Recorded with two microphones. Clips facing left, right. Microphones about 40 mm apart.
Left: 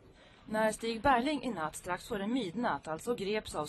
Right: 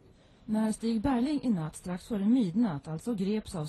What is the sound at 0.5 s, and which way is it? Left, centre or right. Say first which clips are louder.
A woman's voice: right 2 dB; left.